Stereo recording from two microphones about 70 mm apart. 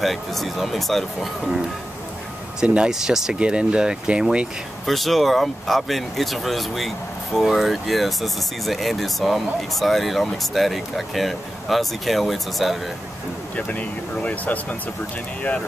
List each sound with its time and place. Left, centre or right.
0.0 s speech: centre
2.6 s speech: centre
4.8 s speech: centre
13.6 s speech: left